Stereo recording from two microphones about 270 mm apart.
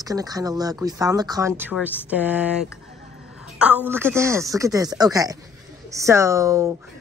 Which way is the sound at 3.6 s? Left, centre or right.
Centre.